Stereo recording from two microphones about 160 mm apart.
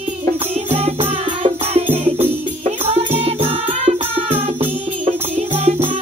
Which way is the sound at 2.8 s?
40° right (ahead or behind).